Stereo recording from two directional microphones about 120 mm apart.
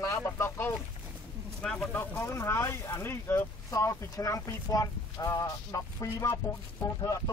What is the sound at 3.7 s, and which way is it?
Speech, 30° left (ahead or behind).